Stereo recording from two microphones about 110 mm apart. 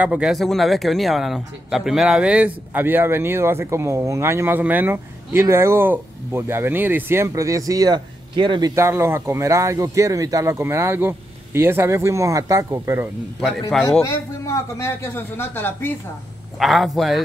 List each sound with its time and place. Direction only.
0.0 s a man's voice: 10° right (ahead or behind); by 8.7 s 40° right (ahead or behind)
8.7 s a man's voice: 25° right (ahead or behind)
13.4 s a man's voice: centre (ahead or behind)
14.0 s a man's voice: 30° left (ahead or behind)
16.5 s a man's voice: centre (ahead or behind)